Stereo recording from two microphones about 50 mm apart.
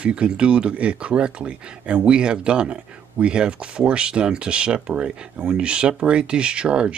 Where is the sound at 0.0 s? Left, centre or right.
Right.